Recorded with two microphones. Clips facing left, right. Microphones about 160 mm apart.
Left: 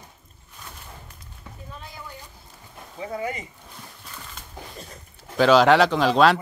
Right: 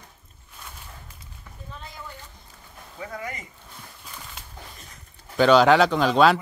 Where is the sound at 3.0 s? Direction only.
25° left (ahead or behind).